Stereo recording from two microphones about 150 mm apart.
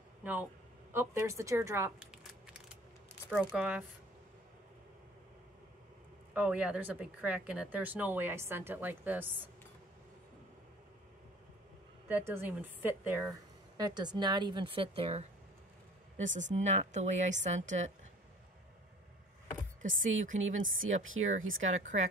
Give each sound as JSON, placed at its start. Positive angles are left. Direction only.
{"t": 0.2, "sound": "a woman's voice", "side_deg": -10}
{"t": 2.0, "sound": "a sound", "side_deg": -5}
{"t": 3.3, "sound": "speech", "side_deg": -5}
{"t": 6.3, "sound": "speech", "side_deg": -5}
{"t": 12.1, "sound": "speech", "side_deg": -15}
{"t": 13.7, "sound": "a woman's voice", "side_deg": -30}
{"t": 16.3, "sound": "speech", "side_deg": -55}
{"t": 19.8, "sound": "chopping", "side_deg": -55}
{"t": 21.3, "sound": "speech", "side_deg": -50}